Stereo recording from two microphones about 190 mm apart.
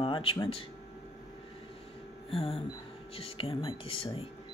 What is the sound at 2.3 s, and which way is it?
Speech, 30° left (ahead or behind).